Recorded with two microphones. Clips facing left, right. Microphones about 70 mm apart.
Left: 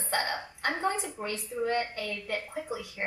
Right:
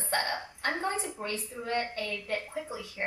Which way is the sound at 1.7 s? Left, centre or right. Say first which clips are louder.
Left 1 dB; left.